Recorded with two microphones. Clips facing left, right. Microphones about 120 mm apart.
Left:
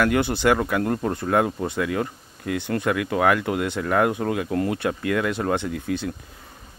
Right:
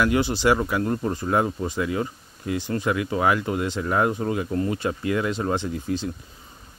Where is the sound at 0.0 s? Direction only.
55° left (ahead or behind).